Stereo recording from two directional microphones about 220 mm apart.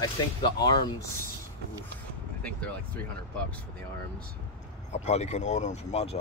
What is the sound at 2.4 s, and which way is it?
Speech, 5° left (ahead or behind).